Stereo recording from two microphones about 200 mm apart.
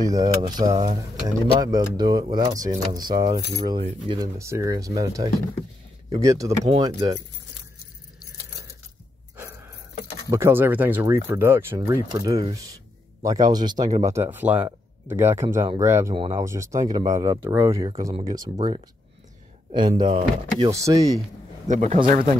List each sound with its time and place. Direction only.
0.0 s speech: 20° right (ahead or behind)
10.3 s speech: 10° right (ahead or behind)
16.2 s speech: 25° right (ahead or behind)
16.4 s speech: 15° right (ahead or behind)
21.6 s a man's voice: 35° right (ahead or behind)